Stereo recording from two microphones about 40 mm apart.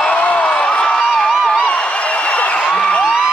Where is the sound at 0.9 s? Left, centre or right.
Centre.